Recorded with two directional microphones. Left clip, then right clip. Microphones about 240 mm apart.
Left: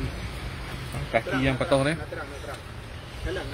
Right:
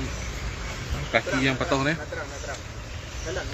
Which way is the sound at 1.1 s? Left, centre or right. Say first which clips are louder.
Right 1 dB; left.